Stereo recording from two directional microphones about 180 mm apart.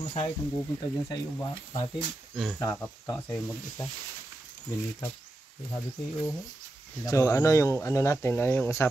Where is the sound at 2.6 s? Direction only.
20° left (ahead or behind).